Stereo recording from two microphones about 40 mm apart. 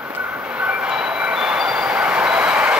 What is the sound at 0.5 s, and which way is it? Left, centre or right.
Train, right.